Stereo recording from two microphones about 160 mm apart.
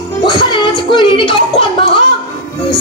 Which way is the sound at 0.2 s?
30° left (ahead or behind).